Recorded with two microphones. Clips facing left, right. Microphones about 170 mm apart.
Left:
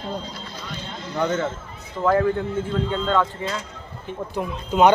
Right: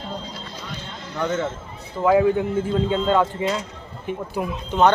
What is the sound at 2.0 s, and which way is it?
Speech, 10° right (ahead or behind).